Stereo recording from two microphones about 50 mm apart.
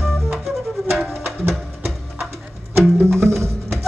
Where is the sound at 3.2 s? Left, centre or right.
Right.